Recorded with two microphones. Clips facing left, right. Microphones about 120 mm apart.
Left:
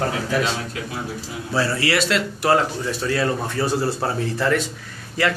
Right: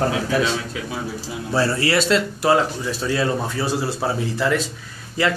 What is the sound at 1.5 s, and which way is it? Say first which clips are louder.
Speech: right 2 dB; 30° right (ahead or behind).